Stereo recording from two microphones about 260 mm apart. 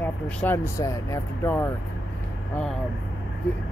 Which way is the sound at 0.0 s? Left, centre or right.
Centre.